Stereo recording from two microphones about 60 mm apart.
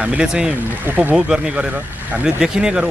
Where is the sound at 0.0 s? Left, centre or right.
Centre.